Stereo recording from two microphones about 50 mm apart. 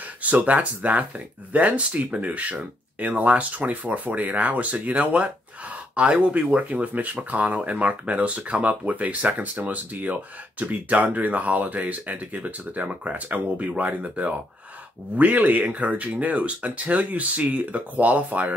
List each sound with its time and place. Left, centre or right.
0.2 s speech: right